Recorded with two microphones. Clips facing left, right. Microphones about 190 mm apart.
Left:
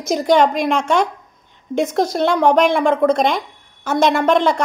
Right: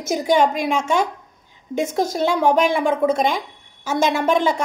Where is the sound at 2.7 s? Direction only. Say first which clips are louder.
Left 3 dB; 5° right (ahead or behind).